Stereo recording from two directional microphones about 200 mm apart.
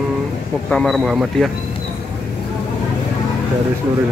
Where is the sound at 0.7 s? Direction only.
5° left (ahead or behind).